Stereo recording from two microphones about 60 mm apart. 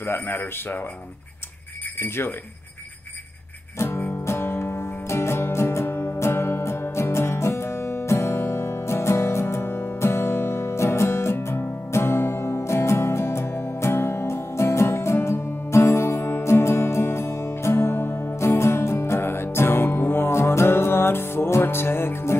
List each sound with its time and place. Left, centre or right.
0.0 s speech: left
2.0 s speech: left
3.7 s music: left